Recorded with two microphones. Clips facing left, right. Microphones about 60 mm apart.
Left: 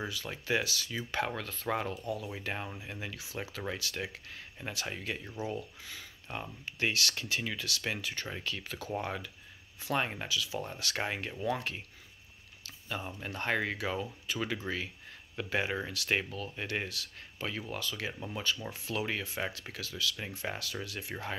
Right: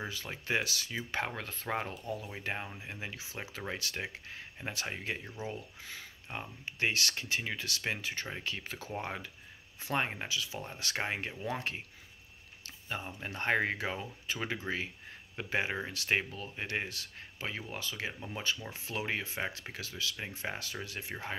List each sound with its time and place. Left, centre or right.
0.1 s speech: right
12.6 s a sound: right
13.0 s speech: right